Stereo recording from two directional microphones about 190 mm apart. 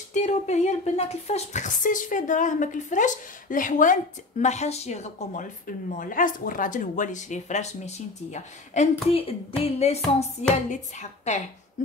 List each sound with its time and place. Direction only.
0.1 s speech: 35° left (ahead or behind)